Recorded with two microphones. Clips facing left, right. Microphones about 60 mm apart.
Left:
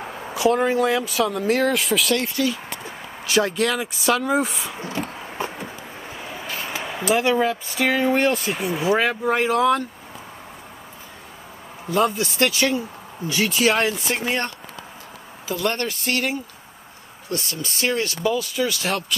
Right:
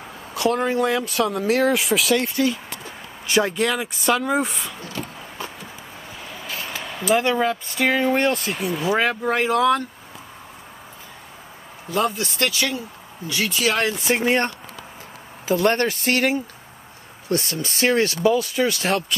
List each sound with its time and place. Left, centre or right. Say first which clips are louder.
0.3 s speech: left 2 dB; centre
4.7 s speech: left 4 dB; left
5.4 s a sound: left 5 dB; left
6.1 s vehicle: left 3 dB; centre
6.4 s a sound: even; centre
6.7 s speech: right 1 dB; centre
12.2 s speech: left 3 dB; left
15.4 s speech: right 5 dB; right